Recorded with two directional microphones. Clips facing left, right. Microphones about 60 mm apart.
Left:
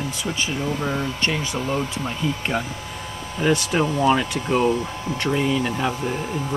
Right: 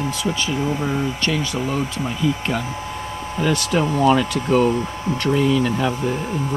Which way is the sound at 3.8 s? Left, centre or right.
Centre.